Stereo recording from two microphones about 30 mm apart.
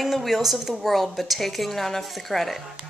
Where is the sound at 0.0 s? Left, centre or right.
Centre.